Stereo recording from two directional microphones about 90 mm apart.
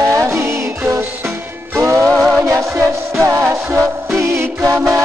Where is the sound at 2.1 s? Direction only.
5° right (ahead or behind).